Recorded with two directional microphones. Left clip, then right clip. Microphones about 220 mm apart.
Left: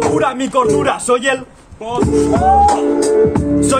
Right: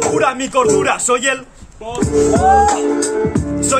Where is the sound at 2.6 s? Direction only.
35° right (ahead or behind).